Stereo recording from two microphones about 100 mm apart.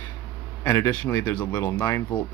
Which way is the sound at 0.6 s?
25° left (ahead or behind).